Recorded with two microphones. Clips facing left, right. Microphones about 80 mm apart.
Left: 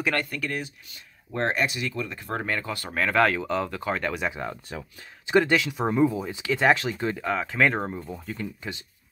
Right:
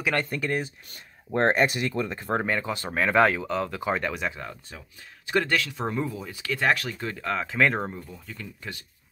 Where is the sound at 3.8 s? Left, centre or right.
Centre.